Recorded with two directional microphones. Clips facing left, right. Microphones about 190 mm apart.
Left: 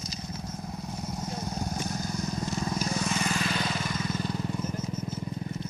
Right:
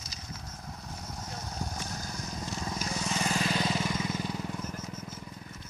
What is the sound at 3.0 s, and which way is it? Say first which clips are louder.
Vehicle: left 2 dB; 30° right (ahead or behind).